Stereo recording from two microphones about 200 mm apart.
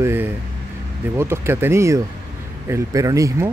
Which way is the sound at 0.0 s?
10° right (ahead or behind).